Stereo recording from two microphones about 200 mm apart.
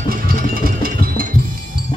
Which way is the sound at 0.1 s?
45° right (ahead or behind).